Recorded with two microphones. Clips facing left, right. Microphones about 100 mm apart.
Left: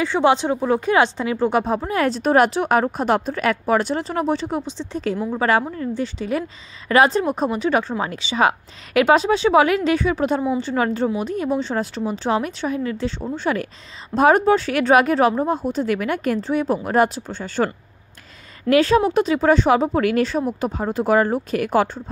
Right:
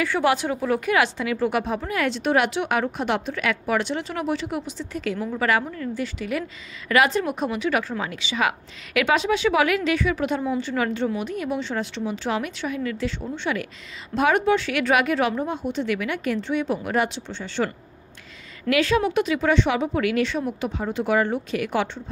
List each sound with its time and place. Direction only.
0.0 s speech: 25° left (ahead or behind); by 22.0 s 40° left (ahead or behind)